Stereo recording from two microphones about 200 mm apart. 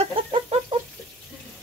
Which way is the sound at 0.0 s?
30° right (ahead or behind).